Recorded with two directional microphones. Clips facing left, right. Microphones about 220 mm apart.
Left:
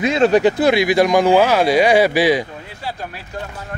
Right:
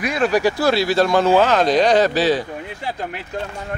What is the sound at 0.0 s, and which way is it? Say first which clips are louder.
Speech: left 4 dB; 25° left (ahead or behind).